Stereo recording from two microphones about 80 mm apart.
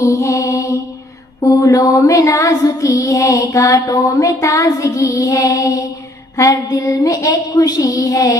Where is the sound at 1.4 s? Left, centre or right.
Left.